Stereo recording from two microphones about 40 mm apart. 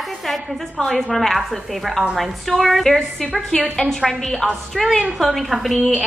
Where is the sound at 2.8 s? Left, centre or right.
Centre.